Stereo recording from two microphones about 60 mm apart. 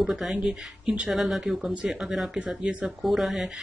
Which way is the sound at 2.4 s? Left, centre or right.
Centre.